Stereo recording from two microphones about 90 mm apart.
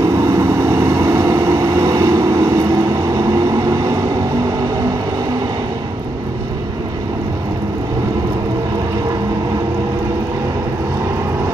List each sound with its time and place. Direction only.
0.0 s vehicle: 35° right (ahead or behind)